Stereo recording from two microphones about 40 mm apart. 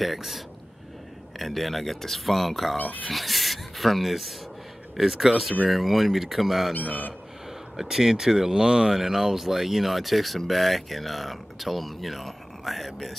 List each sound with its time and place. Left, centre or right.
0.0 s speech: centre
1.4 s speech: centre
6.7 s a man's voice: left
7.7 s speech: centre